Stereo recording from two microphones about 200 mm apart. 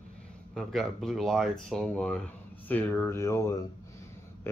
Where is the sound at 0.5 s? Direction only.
Centre (ahead or behind).